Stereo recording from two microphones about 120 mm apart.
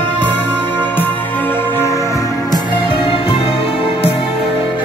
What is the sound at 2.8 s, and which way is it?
Music, 50° left (ahead or behind).